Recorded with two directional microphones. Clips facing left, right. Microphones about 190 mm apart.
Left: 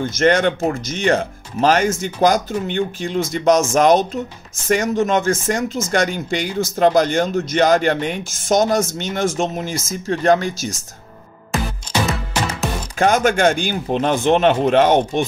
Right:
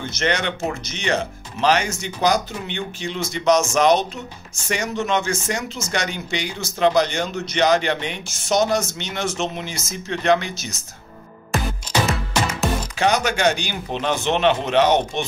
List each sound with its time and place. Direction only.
0.0 s speech: 50° left (ahead or behind)
13.0 s speech: 50° left (ahead or behind)